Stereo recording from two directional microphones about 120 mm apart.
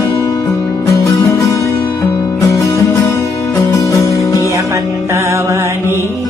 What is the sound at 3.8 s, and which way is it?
Music, 25° left (ahead or behind).